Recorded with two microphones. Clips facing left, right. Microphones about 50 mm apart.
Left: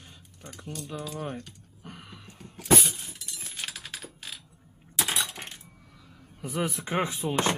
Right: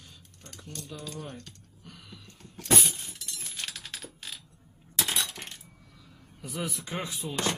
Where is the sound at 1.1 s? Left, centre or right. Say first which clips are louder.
Left 6 dB; left.